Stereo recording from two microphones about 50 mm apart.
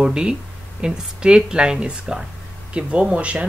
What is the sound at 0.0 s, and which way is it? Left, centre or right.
Speech, centre.